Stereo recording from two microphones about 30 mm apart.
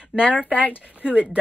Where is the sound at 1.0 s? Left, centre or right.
Right.